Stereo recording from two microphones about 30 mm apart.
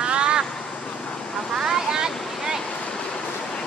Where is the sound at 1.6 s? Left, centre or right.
Centre.